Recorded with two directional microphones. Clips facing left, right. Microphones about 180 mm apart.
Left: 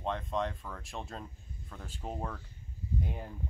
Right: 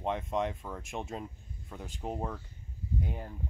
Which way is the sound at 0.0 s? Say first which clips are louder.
Right 2 dB; 20° right (ahead or behind).